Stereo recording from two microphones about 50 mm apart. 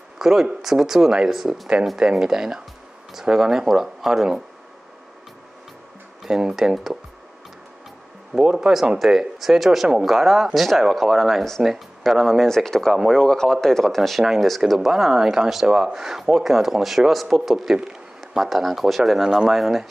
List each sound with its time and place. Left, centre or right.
0.2 s speech: centre
6.2 s speech: centre
8.3 s speech: centre